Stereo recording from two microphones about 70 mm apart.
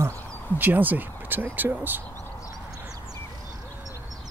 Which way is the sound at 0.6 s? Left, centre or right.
Right.